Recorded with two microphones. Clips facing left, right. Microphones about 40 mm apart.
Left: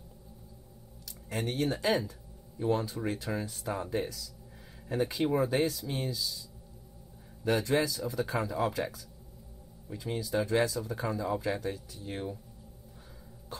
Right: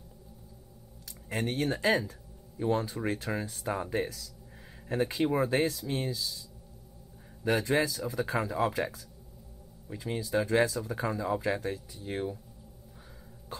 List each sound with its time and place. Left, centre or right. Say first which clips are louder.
1.3 s speech: right 1 dB; centre
4.8 s speech: right 1 dB; centre
5.1 s speech: right 1 dB; centre
7.4 s speech: right 1 dB; centre